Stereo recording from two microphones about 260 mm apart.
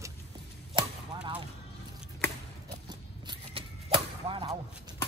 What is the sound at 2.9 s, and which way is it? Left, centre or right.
Whip, centre.